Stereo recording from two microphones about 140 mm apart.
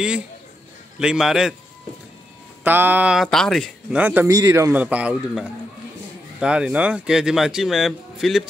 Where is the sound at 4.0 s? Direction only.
10° right (ahead or behind).